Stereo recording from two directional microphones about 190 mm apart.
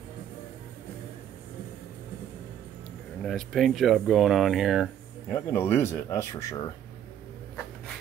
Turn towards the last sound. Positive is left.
turn(degrees=15)  # may be behind; listen again after turning